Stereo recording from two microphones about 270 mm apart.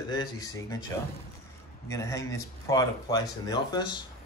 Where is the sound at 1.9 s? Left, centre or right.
Centre.